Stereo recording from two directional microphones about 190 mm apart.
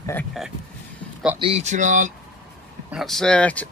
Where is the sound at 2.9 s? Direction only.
Centre (ahead or behind).